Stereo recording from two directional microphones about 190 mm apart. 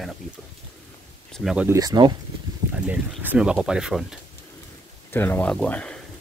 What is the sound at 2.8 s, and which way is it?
Speech, 10° right (ahead or behind).